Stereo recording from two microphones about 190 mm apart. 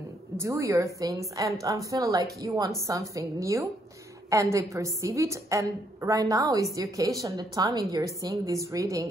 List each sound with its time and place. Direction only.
0.4 s a woman's voice: 15° right (ahead or behind)